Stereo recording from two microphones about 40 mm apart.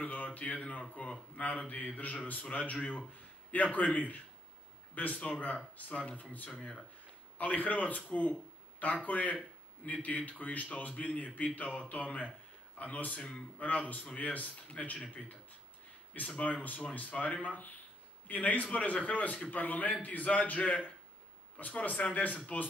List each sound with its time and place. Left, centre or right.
0.0 s a man's voice: left
7.3 s speech: left
16.1 s a man's voice: left